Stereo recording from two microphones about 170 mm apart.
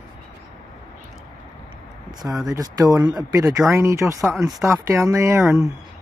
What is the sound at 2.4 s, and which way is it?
Speech, 20° right (ahead or behind).